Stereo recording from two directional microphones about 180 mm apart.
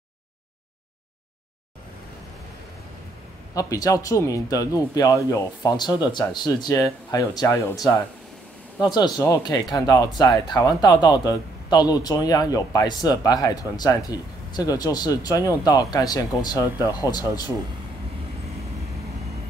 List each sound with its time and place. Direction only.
3.5 s speech: 20° left (ahead or behind)